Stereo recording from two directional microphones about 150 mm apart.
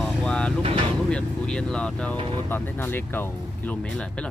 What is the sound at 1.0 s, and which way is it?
Speech, 5° left (ahead or behind).